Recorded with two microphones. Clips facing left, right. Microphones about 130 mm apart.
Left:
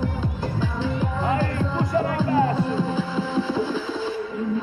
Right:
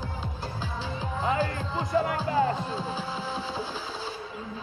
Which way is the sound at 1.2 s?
20° right (ahead or behind).